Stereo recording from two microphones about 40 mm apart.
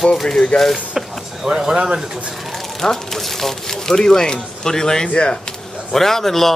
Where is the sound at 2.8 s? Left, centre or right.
Centre.